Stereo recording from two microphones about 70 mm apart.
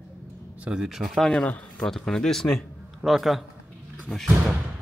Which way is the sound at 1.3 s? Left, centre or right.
Centre.